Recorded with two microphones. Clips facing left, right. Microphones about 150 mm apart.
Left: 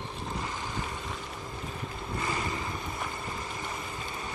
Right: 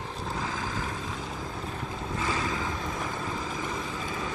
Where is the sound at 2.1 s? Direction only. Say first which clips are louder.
Right 2 dB; 90° right.